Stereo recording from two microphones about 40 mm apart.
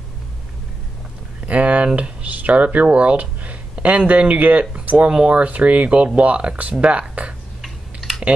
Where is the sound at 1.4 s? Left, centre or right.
Right.